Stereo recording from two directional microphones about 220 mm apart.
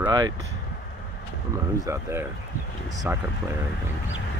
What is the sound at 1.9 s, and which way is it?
Speech, 15° right (ahead or behind).